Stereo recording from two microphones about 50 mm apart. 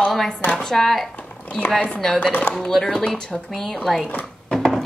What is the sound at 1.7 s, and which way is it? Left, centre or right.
Speech, left.